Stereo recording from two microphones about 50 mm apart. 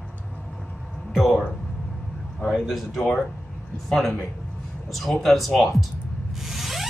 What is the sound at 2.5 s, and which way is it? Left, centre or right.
Speech, centre.